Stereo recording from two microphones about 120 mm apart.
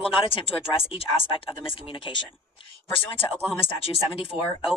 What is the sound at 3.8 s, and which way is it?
Speech, 50° left (ahead or behind).